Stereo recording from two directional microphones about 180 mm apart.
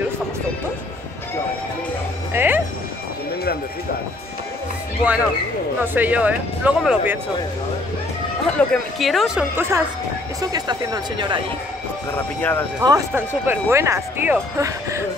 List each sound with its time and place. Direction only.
2.3 s music: 10° right (ahead or behind)
5.8 s speech: 10° right (ahead or behind)
8.5 s speech: 5° left (ahead or behind)
10.4 s speech: 20° right (ahead or behind)
12.4 s speech: 10° left (ahead or behind)
12.8 s speech: 20° right (ahead or behind)